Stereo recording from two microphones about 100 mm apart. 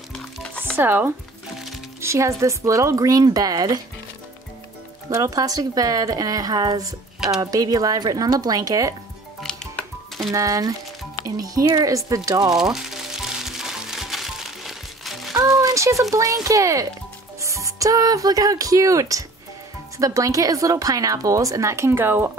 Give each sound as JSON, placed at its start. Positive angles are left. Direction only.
{"t": 0.1, "sound": "music", "side_deg": 10}
{"t": 0.7, "sound": "speech", "side_deg": -20}
{"t": 5.1, "sound": "speech", "side_deg": -35}
{"t": 9.4, "sound": "music", "side_deg": 5}
{"t": 10.3, "sound": "speech", "side_deg": -35}
{"t": 12.5, "sound": "music", "side_deg": -5}
{"t": 15.3, "sound": "a sound", "side_deg": -35}
{"t": 16.4, "sound": "speech", "side_deg": -35}